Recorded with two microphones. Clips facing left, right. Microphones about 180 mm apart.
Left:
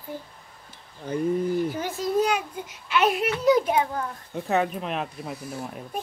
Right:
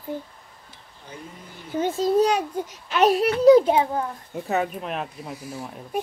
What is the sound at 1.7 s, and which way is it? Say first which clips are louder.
A child's voice: right 5 dB; 25° right (ahead or behind).